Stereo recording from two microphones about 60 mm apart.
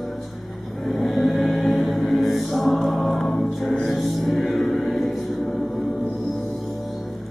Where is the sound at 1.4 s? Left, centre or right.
Centre.